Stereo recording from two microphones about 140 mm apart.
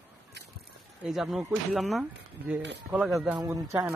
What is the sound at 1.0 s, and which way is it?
Speech, centre (ahead or behind).